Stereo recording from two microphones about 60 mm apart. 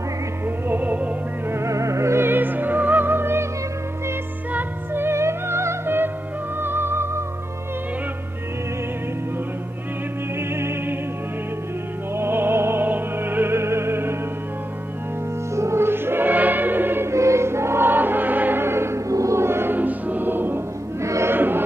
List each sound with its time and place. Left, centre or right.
0.7 s music: right
1.5 s music: right
2.2 s music: right
4.5 s music: right
10.5 s music: right
12.2 s music: right
15.5 s music: right
17.1 s choir: right
19.0 s gong: right
19.4 s music: right
21.0 s choir: right
21.3 s music: right